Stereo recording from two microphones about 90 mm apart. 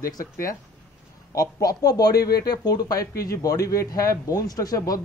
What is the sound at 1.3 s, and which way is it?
Speech, 40° left (ahead or behind).